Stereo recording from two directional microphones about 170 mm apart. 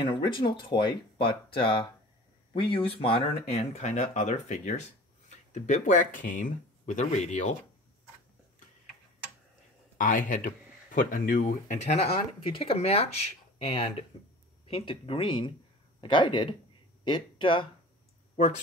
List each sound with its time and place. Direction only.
0.0 s speech: 30° left (ahead or behind); by 7.5 s 45° left (ahead or behind)
9.9 s speech: 50° left (ahead or behind); by 17.6 s 30° left (ahead or behind)